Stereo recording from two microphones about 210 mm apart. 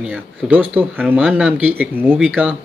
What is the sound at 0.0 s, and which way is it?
A man's voice, 5° right (ahead or behind).